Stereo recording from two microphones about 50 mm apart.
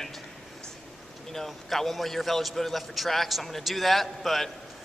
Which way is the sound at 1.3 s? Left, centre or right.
Centre.